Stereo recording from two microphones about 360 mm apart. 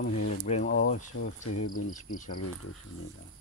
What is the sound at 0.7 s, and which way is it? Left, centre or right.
Speech, left.